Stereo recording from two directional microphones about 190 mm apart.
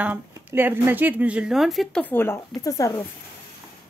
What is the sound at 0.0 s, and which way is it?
Speech, 10° right (ahead or behind).